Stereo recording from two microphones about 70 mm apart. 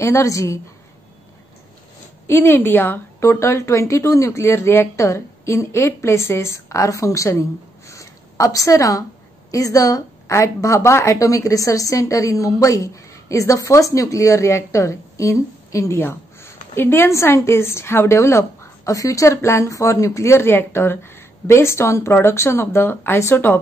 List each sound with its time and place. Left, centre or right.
0.0 s a woman's voice: left
2.2 s a woman's voice: left
3.2 s a woman's voice: left
16.0 s a woman's voice: left